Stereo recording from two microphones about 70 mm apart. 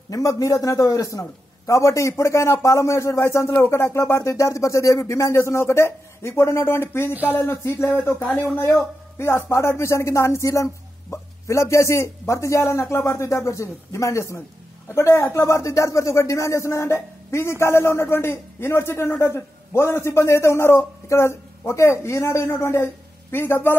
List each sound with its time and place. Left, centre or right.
0.1 s speech: left